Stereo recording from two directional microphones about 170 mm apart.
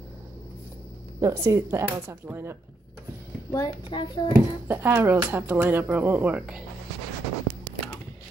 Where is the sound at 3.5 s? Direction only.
25° left (ahead or behind).